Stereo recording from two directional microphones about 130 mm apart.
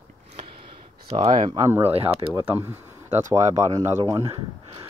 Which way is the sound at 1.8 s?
50° right (ahead or behind).